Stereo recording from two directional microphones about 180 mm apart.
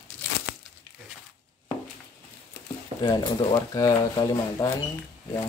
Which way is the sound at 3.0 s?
25° left (ahead or behind).